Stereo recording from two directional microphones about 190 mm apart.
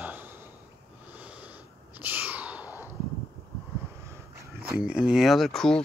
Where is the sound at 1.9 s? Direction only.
10° right (ahead or behind).